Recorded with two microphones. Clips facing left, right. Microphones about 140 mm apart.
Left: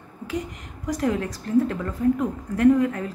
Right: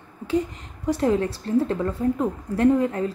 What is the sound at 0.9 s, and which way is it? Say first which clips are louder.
A woman's voice: right 3 dB; 30° right (ahead or behind).